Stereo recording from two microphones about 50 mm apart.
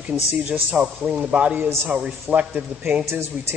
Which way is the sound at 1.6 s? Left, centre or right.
Right.